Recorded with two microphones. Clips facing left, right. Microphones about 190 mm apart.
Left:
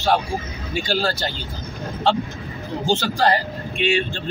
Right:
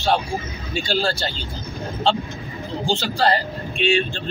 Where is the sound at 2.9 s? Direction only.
15° left (ahead or behind).